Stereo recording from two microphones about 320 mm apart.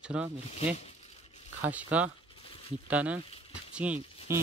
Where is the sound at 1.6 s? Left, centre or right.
Centre.